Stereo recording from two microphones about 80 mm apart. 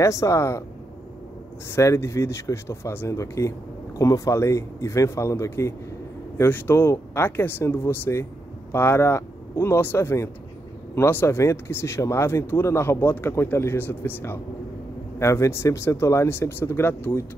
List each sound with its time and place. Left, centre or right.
0.0 s speech: left
1.7 s speech: left